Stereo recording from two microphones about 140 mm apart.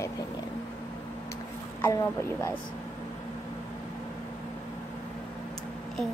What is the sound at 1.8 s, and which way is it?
Speech, 20° left (ahead or behind).